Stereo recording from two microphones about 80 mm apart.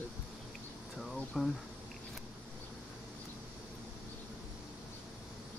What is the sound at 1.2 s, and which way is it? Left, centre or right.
Speech, centre.